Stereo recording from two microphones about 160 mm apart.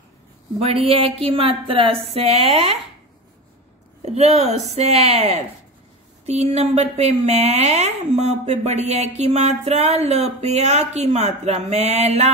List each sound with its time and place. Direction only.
0.6 s speech: 40° right (ahead or behind)
4.0 s a woman's voice: 40° right (ahead or behind)
6.2 s a woman's voice: 40° right (ahead or behind)